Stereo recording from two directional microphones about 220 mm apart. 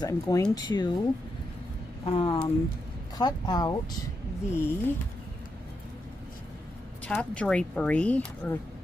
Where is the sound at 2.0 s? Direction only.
25° left (ahead or behind).